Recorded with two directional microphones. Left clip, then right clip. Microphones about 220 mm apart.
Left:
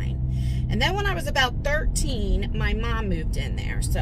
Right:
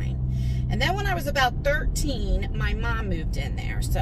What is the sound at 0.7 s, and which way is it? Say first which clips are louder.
Speech: left 1 dB; 15° left (ahead or behind).